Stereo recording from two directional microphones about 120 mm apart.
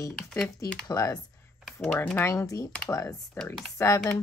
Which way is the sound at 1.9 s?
10° left (ahead or behind).